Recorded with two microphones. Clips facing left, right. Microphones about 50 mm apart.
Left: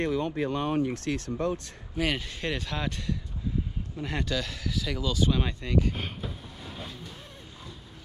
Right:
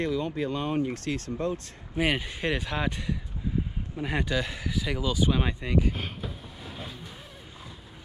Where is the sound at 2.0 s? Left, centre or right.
Centre.